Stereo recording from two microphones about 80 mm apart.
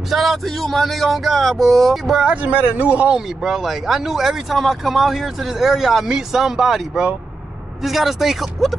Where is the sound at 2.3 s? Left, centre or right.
Centre.